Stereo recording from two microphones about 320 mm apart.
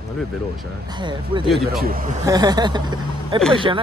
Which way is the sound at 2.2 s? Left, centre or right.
Centre.